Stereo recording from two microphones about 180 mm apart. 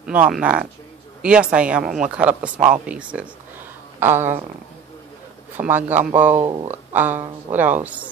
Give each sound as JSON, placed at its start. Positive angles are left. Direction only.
{"t": 0.0, "sound": "speech", "side_deg": -5}
{"t": 5.6, "sound": "speech", "side_deg": -10}
{"t": 6.3, "sound": "speech", "side_deg": -30}
{"t": 6.9, "sound": "speech", "side_deg": -10}